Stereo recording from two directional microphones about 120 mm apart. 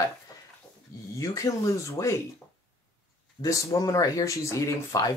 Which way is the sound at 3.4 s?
30° left (ahead or behind).